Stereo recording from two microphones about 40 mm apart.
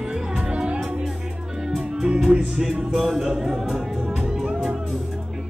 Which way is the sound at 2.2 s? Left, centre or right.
Centre.